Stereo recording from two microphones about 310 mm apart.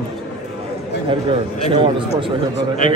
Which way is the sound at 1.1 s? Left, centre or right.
Centre.